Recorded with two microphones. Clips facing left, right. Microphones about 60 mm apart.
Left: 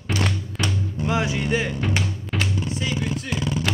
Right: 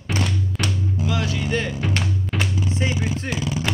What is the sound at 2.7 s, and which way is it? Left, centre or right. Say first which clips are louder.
Speech: right 2 dB; right.